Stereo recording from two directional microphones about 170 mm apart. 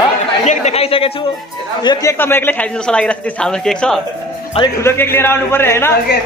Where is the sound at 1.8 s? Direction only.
20° left (ahead or behind); by 4.0 s 5° left (ahead or behind).